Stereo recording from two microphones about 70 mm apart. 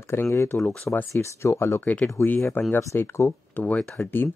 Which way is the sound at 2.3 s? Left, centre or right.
Left.